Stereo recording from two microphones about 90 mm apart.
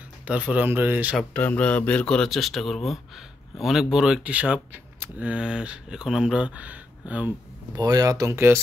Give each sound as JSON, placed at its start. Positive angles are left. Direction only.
{"t": 0.3, "sound": "speech", "side_deg": -15}
{"t": 1.3, "sound": "speech", "side_deg": 15}
{"t": 7.7, "sound": "speech", "side_deg": -45}